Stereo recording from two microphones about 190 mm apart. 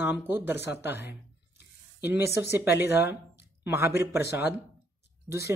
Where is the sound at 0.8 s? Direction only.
65° left (ahead or behind).